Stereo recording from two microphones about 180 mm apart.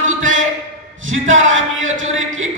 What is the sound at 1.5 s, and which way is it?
Speech, 90° right.